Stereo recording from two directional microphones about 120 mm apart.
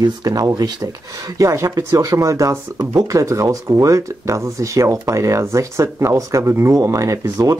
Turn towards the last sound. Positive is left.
turn(degrees=-30)  # may be behind; listen again after turning